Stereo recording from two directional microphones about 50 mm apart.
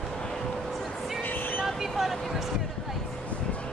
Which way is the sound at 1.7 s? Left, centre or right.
Centre.